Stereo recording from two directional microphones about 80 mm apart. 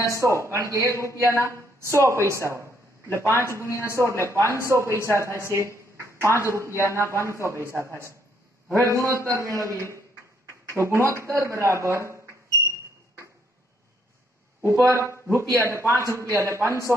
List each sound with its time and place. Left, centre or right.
0.1 s a woman's voice: right
3.6 s a woman's voice: left
4.5 s a woman's voice: right
14.9 s a woman's voice: right